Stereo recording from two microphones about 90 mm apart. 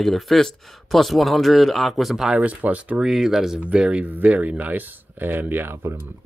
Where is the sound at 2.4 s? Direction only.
15° right (ahead or behind).